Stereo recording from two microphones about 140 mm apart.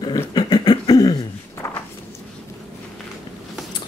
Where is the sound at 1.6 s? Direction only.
20° left (ahead or behind).